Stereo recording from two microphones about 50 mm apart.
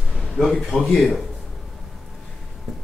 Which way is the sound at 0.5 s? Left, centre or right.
Left.